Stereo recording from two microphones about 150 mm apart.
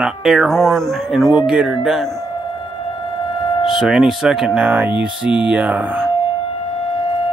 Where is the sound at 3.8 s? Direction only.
5° right (ahead or behind).